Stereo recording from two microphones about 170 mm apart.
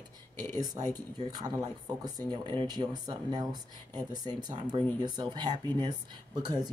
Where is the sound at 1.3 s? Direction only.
25° right (ahead or behind).